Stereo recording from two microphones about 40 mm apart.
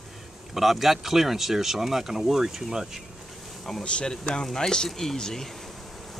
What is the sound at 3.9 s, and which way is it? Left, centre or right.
Speech, left.